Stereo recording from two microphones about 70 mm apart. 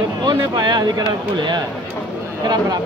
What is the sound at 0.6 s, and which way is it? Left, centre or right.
Speech, right.